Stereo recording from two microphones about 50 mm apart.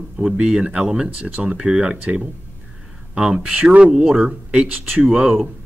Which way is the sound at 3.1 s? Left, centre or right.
Centre.